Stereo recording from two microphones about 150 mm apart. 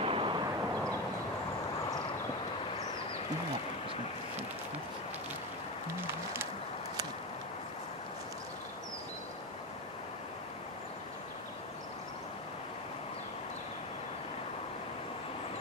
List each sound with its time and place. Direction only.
0.0 s vehicle: 35° right (ahead or behind)
5.9 s music: 15° right (ahead or behind)